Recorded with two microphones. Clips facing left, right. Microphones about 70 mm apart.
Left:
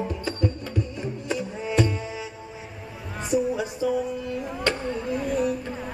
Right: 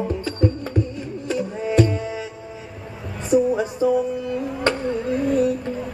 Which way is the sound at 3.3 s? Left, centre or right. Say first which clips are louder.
Right 6 dB; right.